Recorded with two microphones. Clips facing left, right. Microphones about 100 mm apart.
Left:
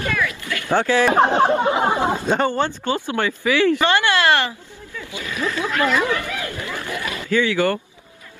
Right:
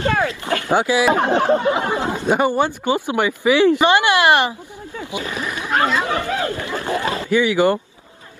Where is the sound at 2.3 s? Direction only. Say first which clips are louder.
Right 2 dB; 10° right (ahead or behind).